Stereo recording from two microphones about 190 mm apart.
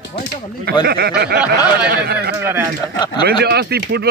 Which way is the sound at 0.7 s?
55° right (ahead or behind).